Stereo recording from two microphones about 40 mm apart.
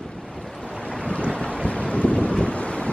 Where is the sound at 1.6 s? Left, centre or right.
Left.